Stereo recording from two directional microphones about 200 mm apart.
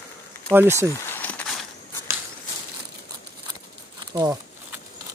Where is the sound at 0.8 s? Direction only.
10° left (ahead or behind).